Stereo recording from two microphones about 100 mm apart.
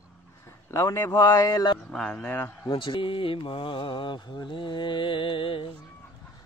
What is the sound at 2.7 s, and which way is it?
Speech, 60° left (ahead or behind).